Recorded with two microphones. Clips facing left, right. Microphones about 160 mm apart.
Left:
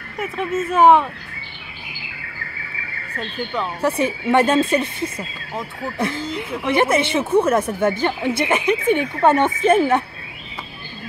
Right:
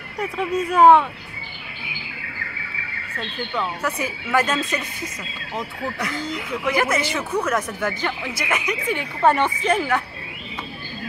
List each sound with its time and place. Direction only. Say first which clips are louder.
0.2 s speech: even; 5° left (ahead or behind)
3.2 s speech: left 2 dB; 10° left (ahead or behind)
3.8 s speech: left 7 dB; 30° left (ahead or behind)